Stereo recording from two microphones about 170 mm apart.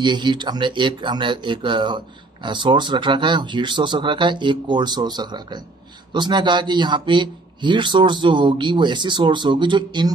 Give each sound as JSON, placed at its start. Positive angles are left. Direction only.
{"t": 0.0, "sound": "a man's voice", "side_deg": -25}